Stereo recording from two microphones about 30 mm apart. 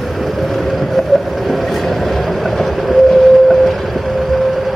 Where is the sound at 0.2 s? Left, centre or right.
Centre.